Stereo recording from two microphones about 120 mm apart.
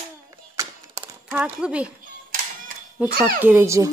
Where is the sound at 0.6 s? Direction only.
20° right (ahead or behind).